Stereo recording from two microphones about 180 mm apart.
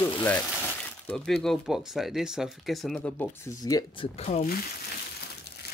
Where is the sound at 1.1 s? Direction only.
Centre (ahead or behind); by 4.1 s 20° left (ahead or behind).